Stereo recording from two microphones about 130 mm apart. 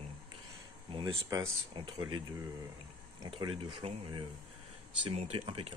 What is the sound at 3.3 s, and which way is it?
Speech, 40° right (ahead or behind).